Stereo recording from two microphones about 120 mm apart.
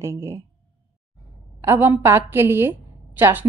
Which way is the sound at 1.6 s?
20° right (ahead or behind).